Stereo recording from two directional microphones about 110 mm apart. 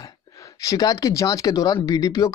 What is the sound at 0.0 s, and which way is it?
Speech, 30° left (ahead or behind).